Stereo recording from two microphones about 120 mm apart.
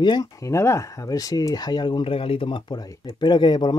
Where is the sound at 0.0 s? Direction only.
30° left (ahead or behind).